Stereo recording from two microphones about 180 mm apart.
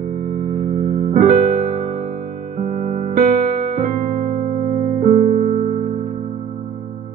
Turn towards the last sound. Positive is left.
turn(degrees=-45)  # may be behind; listen again after turning